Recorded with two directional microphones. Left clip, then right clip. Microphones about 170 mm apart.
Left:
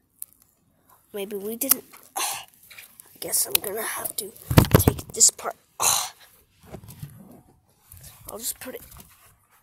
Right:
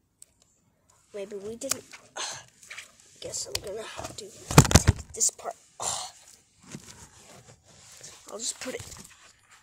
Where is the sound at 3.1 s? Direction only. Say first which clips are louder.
Left 6 dB; 40° left (ahead or behind).